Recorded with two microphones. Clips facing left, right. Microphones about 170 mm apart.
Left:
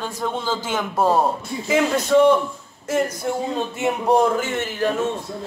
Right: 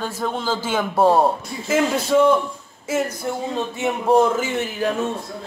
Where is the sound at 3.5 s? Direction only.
Centre (ahead or behind).